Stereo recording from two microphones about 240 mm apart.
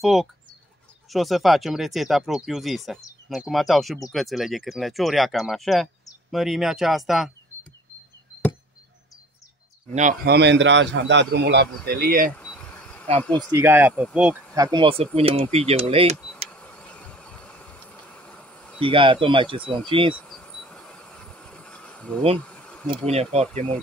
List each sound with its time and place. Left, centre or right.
0.0 s speech: centre
9.9 s speech: right
10.3 s a man's voice: right
12.3 s insect: centre
13.2 s speech: centre
13.5 s speech: centre
14.5 s speech: centre
16.4 s a sound: centre
18.8 s speech: right
20.2 s insect: centre
22.4 s bee: centre
23.4 s speech: centre